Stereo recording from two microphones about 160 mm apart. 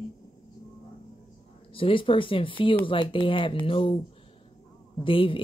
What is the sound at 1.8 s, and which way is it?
Speech, 35° left (ahead or behind).